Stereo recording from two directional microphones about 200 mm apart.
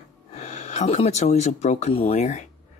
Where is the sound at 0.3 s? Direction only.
35° left (ahead or behind).